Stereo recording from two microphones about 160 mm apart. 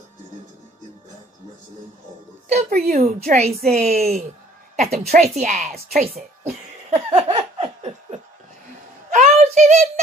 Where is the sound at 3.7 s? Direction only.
40° right (ahead or behind).